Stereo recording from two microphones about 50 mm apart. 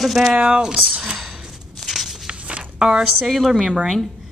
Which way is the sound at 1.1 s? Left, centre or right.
Centre.